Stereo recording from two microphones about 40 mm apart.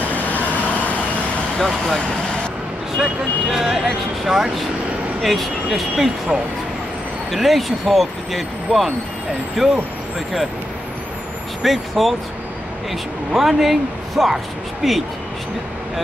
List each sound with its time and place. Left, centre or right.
0.0 s vehicle: left
1.6 s speech: centre
3.0 s speech: centre
7.2 s speech: centre
11.6 s speech: centre
13.3 s speech: centre